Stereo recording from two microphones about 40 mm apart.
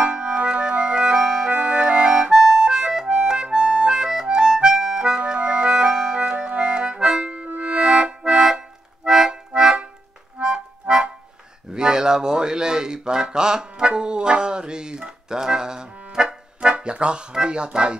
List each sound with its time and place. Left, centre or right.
0.0 s music: right
1.5 s organ: right
2.3 s harmonica: centre
2.6 s music: centre
5.2 s music: right
6.5 s accordion: right
7.4 s music: right
7.7 s accordion: right
11.7 s a sound: centre